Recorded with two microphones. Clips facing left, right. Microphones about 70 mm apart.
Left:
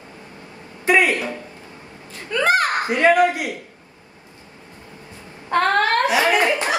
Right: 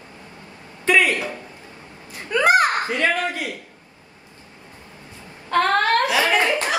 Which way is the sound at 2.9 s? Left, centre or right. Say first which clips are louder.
Left 7 dB; centre.